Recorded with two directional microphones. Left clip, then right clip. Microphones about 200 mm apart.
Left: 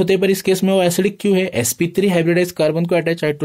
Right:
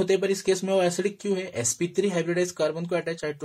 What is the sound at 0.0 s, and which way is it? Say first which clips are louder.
Speech: left 8 dB; 45° left (ahead or behind).